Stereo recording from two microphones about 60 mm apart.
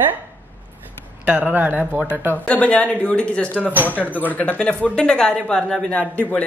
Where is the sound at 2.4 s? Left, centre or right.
Left.